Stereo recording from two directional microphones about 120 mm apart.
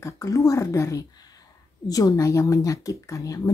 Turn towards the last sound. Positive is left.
turn(degrees=25)  # may be behind; listen again after turning